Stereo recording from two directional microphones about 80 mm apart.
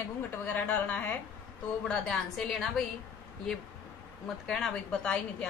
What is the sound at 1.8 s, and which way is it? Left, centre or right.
Speech, centre.